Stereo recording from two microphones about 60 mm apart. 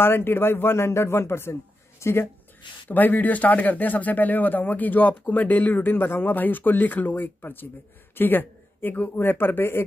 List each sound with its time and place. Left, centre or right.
0.0 s a man's voice: left
2.9 s speech: left